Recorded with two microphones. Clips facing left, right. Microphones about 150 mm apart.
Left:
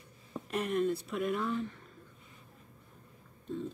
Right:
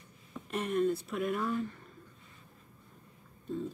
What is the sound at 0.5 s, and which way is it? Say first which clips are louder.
Speech: right 1 dB; centre (ahead or behind).